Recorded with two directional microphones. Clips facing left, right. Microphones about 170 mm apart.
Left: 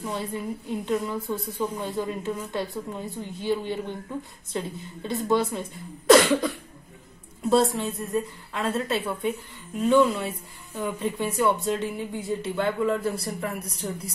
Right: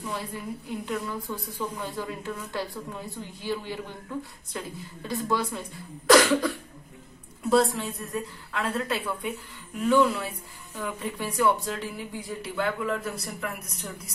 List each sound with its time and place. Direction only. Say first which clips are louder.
0.0 s a woman's voice: left 4 dB; 25° left (ahead or behind)
8.0 s a woman's voice: left 5 dB; 20° left (ahead or behind)